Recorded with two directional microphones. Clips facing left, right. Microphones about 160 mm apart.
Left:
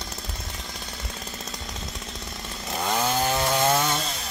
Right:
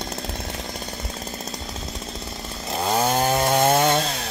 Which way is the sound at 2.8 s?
35° right (ahead or behind).